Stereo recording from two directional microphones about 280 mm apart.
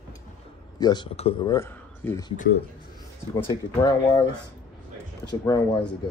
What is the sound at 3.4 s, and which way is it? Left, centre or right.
Speech, centre.